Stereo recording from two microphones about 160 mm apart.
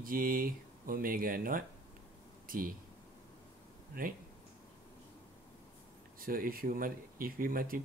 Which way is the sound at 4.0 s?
60° right (ahead or behind).